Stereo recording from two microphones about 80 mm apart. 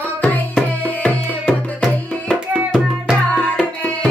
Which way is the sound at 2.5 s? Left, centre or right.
Centre.